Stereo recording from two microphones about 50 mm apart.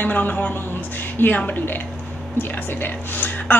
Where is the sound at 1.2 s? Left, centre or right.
Left.